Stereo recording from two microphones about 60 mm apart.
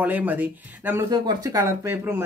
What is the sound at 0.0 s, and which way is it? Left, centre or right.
Speech, right.